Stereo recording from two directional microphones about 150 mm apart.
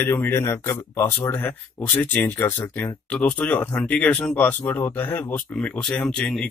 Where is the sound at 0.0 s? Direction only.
15° left (ahead or behind).